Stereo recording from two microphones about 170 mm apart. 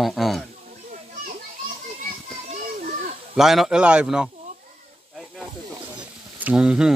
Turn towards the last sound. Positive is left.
turn(degrees=-5)  # may be behind; listen again after turning